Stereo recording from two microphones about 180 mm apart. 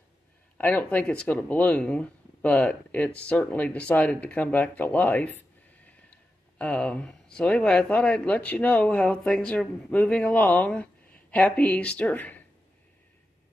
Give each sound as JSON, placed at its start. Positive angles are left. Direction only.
{"t": 0.6, "sound": "speech", "side_deg": 10}